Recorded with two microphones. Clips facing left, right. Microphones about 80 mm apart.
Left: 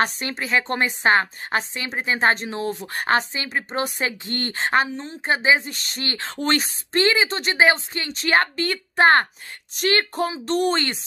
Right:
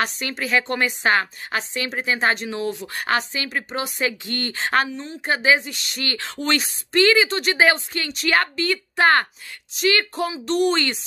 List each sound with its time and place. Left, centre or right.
0.0 s a woman's voice: left
5.7 s speech: left
9.8 s a woman's voice: left